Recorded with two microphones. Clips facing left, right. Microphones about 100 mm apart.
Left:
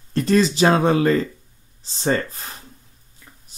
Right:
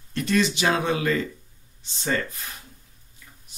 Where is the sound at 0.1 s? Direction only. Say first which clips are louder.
Left 5 dB; 35° left (ahead or behind).